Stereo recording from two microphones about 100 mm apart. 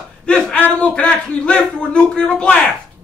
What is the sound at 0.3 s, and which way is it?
Speech, 15° left (ahead or behind).